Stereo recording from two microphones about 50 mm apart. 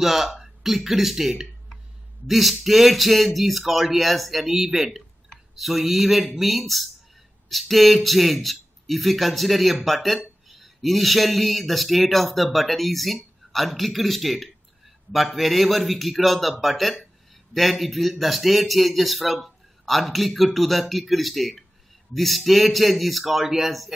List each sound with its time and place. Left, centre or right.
0.0 s speech: centre